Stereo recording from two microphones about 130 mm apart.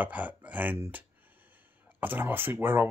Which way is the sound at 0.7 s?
15° right (ahead or behind).